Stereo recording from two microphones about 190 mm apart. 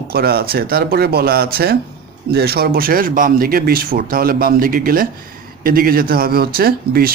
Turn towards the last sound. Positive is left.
turn(degrees=-50)  # may be behind; listen again after turning